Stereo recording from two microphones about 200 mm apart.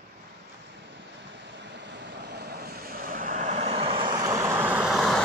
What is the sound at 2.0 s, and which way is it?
Vehicle, 55° right (ahead or behind).